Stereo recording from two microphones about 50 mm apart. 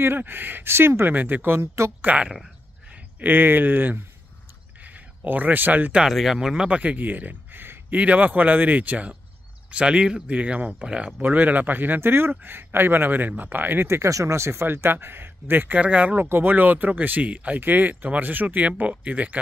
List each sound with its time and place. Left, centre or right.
0.0 s speech: right
0.7 s speech: right
1.1 s speech: right
6.0 s speech: centre
6.7 s speech: right
7.9 s speech: right
11.1 s speech: right
13.8 s speech: right
14.7 s speech: right
15.7 s speech: right
16.2 s speech: right
17.2 s speech: right
17.6 s speech: right